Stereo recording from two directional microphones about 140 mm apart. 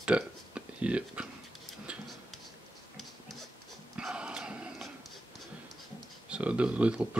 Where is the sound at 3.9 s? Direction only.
5° right (ahead or behind).